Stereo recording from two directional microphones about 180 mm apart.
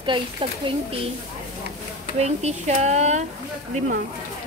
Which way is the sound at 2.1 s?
35° right (ahead or behind).